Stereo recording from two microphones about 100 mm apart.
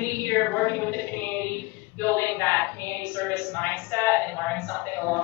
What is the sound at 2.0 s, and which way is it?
A woman's voice, 20° left (ahead or behind).